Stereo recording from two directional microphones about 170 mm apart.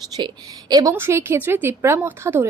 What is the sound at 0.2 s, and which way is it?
A woman's voice, 25° right (ahead or behind).